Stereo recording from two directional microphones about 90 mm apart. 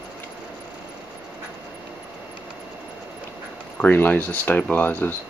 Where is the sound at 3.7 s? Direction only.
20° left (ahead or behind).